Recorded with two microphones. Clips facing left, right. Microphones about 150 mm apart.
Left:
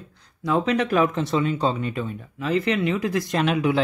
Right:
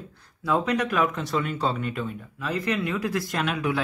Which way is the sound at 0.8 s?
30° left (ahead or behind).